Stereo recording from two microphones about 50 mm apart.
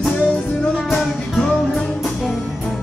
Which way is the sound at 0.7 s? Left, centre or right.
Centre.